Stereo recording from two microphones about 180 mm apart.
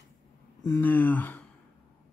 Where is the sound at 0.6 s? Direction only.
15° left (ahead or behind).